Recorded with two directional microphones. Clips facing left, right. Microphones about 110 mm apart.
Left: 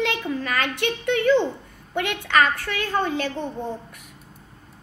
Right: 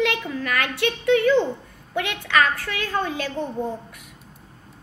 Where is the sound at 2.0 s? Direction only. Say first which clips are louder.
Left 1 dB; 15° left (ahead or behind).